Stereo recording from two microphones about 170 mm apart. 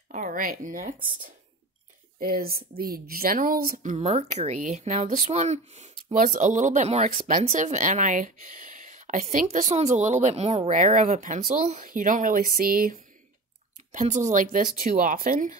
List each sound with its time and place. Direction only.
0.1 s speech: 55° right (ahead or behind)
2.1 s speech: 60° right (ahead or behind)
13.9 s speech: 45° right (ahead or behind)